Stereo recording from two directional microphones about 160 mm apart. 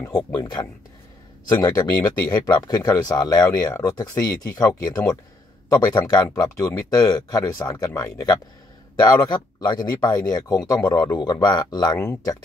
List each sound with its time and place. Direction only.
0.0 s speech: 25° left (ahead or behind)